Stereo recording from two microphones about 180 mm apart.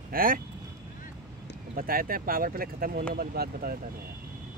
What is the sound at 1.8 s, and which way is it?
Speech, 55° right (ahead or behind).